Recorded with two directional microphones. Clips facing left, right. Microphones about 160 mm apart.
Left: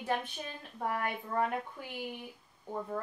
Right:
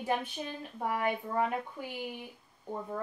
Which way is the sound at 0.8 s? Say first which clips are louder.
Right 3 dB; 5° right (ahead or behind).